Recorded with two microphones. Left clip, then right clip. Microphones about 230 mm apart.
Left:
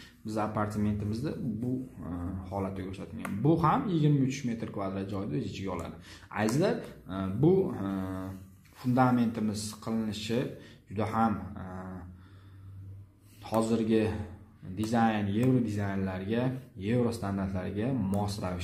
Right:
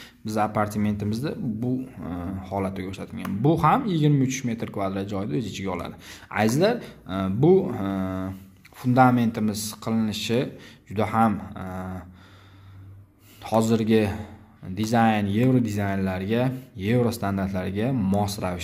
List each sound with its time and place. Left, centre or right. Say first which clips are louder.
0.0 s speech: right 8 dB; right
13.4 s speech: right 7 dB; right